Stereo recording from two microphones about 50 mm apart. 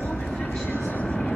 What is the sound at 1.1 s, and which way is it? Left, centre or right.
Vehicle, left.